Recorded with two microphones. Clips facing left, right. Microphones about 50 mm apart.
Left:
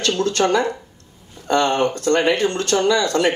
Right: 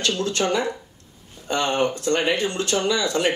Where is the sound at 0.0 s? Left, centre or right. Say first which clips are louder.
Left 4 dB; left.